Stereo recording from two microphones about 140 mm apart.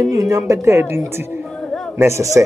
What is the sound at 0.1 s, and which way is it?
Speech, 25° right (ahead or behind).